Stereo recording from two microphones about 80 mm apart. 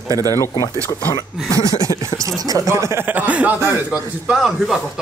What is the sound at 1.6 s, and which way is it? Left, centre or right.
Speech, left.